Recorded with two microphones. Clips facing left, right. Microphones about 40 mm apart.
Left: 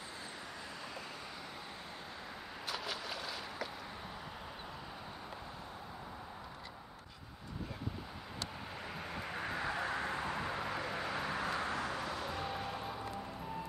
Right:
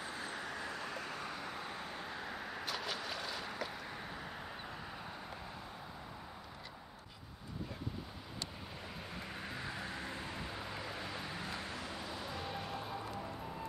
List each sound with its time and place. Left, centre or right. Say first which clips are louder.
0.2 s vehicle: right 4 dB; right
2.6 s boat: left 1 dB; centre
9.1 s vehicle: left 6 dB; centre
9.8 s vehicle: left 6 dB; left; by 11.1 s centre
11.1 s vehicle: left 6 dB; left
12.3 s music: left 3 dB; centre